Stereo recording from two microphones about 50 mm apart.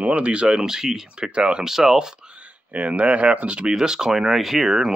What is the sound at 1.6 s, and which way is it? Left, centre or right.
Speech, centre.